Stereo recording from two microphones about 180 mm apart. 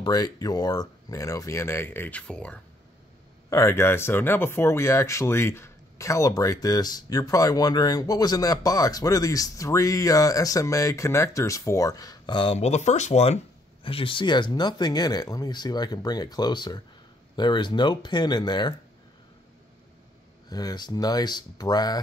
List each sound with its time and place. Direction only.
0.0 s speech: 20° left (ahead or behind)
20.4 s speech: 20° left (ahead or behind)